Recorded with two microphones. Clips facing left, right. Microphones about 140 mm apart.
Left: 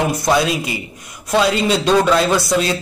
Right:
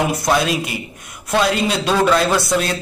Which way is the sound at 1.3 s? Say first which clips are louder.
Left 2 dB; 5° right (ahead or behind).